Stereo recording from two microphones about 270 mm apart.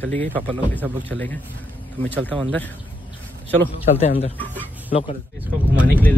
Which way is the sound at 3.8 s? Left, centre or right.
Left.